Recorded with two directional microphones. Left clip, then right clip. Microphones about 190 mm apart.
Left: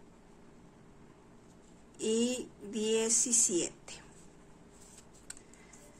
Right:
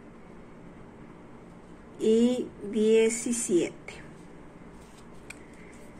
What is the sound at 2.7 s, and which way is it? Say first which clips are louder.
Speech: right 9 dB; 40° left (ahead or behind).